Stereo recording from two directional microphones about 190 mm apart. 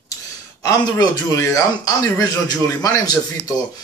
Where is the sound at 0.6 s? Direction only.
20° left (ahead or behind).